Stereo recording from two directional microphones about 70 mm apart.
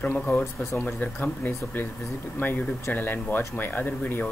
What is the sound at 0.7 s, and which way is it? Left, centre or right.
Speech, left.